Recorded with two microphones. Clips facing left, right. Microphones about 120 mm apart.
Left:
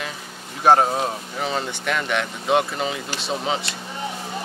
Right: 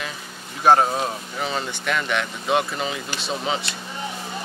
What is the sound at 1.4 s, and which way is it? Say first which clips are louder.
Speech: left 1 dB; 45° left (ahead or behind).